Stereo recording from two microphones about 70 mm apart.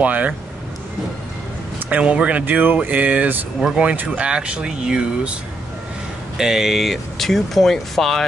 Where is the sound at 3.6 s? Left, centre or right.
Centre.